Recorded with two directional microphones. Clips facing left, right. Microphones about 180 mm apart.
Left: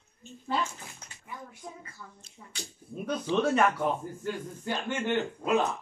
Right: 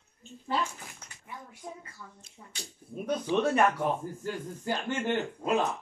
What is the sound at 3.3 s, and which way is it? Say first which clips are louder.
Speech: even; 15° right (ahead or behind).